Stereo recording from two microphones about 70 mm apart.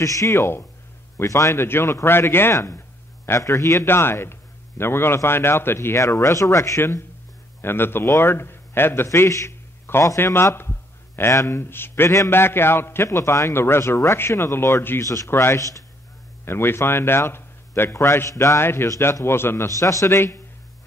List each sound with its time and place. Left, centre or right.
0.0 s a man's voice: left
3.3 s speech: left
3.8 s a man's voice: left
5.9 s speech: left
6.8 s a man's voice: left
16.4 s a man's voice: left
18.1 s speech: left
18.6 s a man's voice: left
19.8 s speech: left
20.2 s a man's voice: left